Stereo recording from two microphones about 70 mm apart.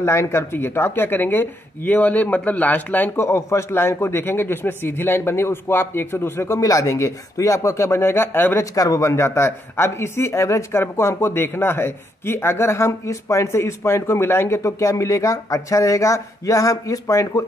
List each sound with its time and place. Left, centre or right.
0.0 s speech: left
3.2 s speech: left
8.7 s speech: left